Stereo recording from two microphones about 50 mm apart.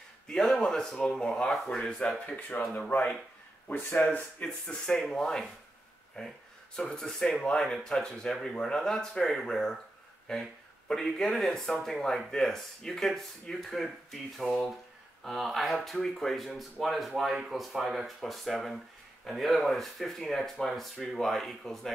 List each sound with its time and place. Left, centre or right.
0.3 s speech: centre; by 4.2 s left
4.2 s speech: centre
6.2 s speech: centre